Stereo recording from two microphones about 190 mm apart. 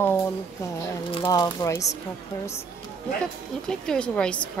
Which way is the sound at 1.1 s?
25° left (ahead or behind).